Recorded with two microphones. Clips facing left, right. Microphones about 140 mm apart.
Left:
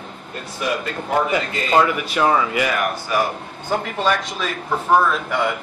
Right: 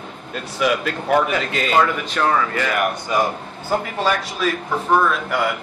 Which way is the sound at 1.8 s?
10° left (ahead or behind).